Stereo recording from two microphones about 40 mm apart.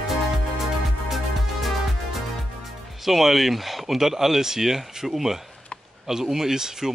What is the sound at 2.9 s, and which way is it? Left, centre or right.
Speech, centre.